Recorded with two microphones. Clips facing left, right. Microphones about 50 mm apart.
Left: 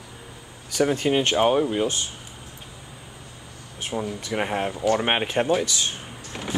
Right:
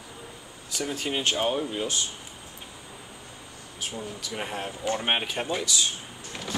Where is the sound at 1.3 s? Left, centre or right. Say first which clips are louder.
Left 7 dB; left.